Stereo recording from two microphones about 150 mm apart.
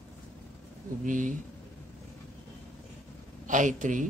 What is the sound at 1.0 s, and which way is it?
Speech, 60° right (ahead or behind).